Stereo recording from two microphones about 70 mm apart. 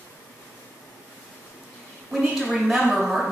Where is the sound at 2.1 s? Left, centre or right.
Centre.